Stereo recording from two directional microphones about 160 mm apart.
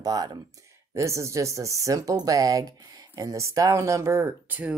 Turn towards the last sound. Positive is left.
turn(degrees=-10)  # may be behind; listen again after turning